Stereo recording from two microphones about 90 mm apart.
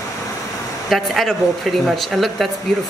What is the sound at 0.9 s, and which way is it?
Speech, centre (ahead or behind).